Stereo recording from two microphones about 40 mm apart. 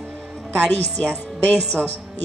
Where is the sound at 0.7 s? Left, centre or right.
Left.